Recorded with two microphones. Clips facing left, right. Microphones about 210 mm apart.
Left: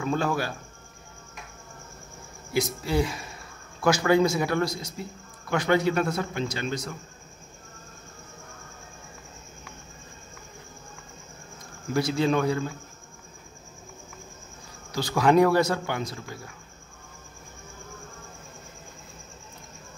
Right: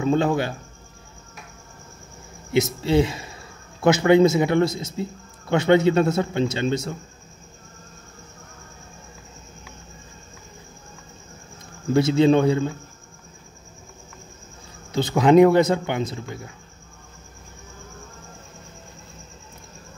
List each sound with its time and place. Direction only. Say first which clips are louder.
0.0 s a man's voice: right 6 dB; 25° right (ahead or behind)
2.5 s a man's voice: right 6 dB; 25° right (ahead or behind)
11.9 s a man's voice: right 7 dB; 25° right (ahead or behind)
14.9 s a man's voice: right 5 dB; 20° right (ahead or behind)